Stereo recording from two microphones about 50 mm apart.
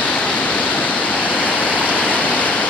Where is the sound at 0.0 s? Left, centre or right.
Left.